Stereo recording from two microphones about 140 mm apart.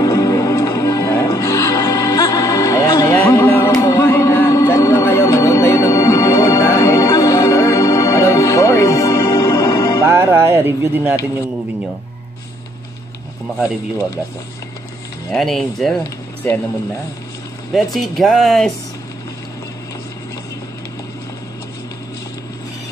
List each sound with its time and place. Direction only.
0.0 s music: 25° left (ahead or behind)
10.0 s music: 15° right (ahead or behind)
15.3 s speech: centre (ahead or behind)
16.4 s speech: 15° left (ahead or behind)
17.9 s speech: centre (ahead or behind)